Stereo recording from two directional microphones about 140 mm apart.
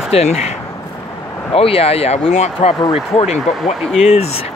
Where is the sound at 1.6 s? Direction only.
45° left (ahead or behind).